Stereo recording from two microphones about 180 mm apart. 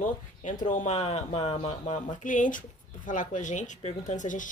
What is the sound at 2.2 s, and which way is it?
Speech, 45° left (ahead or behind).